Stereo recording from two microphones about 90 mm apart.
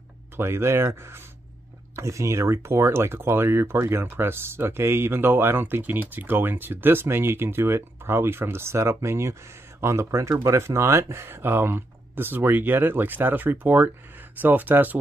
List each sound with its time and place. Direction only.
0.4 s speech: 30° right (ahead or behind)